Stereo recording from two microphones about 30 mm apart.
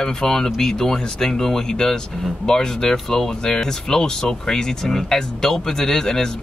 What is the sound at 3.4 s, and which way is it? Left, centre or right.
Speech, left.